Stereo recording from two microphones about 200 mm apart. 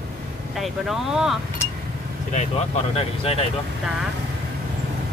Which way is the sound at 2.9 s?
30° left (ahead or behind).